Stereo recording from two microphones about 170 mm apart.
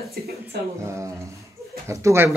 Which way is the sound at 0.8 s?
15° right (ahead or behind).